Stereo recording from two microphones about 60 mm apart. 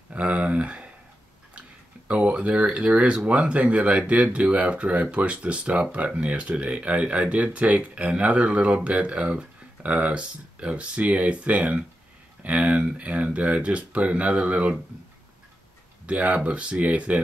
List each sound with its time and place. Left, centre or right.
0.1 s speech: right
2.0 s speech: centre
16.1 s speech: right